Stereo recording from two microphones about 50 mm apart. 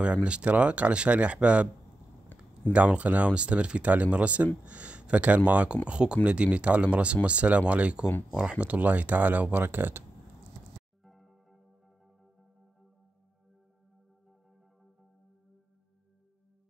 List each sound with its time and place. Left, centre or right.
0.0 s speech: right
2.3 s a sound: left
2.7 s speech: right
11.1 s music: centre